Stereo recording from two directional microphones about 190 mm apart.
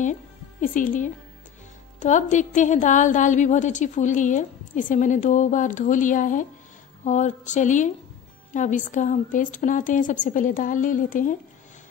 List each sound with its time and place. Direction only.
0.0 s a woman's voice: 40° left (ahead or behind)